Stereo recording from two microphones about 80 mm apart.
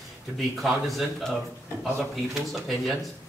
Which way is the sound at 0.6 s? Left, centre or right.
Centre.